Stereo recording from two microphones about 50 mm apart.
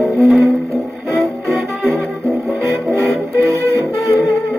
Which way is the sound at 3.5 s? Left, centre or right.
Right.